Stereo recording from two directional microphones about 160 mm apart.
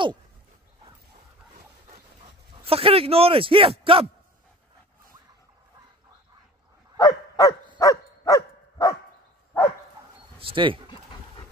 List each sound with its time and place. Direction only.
1.9 s pant: 40° right (ahead or behind)
7.0 s dog: 25° left (ahead or behind)
10.4 s speech: 30° right (ahead or behind)